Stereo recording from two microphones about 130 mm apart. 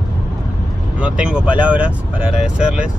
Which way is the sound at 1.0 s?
10° right (ahead or behind).